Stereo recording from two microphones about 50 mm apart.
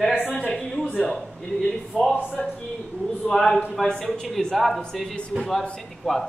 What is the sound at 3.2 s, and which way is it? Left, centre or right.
Speech, centre.